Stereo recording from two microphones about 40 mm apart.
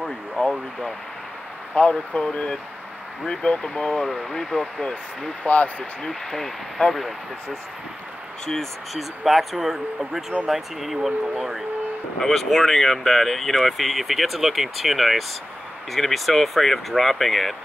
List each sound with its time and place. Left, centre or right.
0.4 s speech: left
1.8 s speech: left; by 5.3 s centre
5.4 s speech: left
6.0 s speech: centre
8.9 s speech: centre
12.2 s speech: centre